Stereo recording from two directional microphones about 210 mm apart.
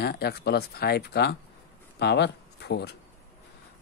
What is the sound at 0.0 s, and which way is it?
Speech, 50° left (ahead or behind).